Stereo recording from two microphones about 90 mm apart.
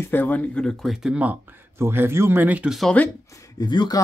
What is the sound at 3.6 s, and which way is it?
Speech, 50° left (ahead or behind).